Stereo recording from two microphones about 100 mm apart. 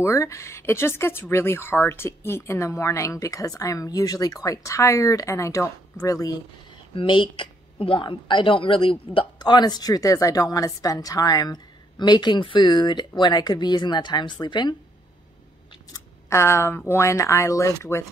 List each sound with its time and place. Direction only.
0.0 s speech: 30° left (ahead or behind)
7.0 s a woman's voice: 55° left (ahead or behind)
16.3 s speech: 25° left (ahead or behind)